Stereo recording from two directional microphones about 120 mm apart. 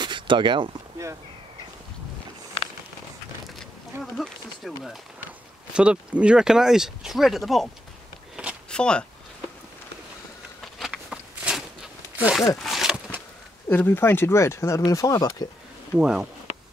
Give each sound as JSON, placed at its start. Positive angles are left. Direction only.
{"t": 0.0, "sound": "a sound", "side_deg": -40}
{"t": 3.5, "sound": "speech", "side_deg": 5}
{"t": 5.7, "sound": "speech", "side_deg": -10}
{"t": 10.8, "sound": "a sound", "side_deg": 0}
{"t": 13.7, "sound": "speech", "side_deg": 15}
{"t": 16.0, "sound": "speech", "side_deg": -5}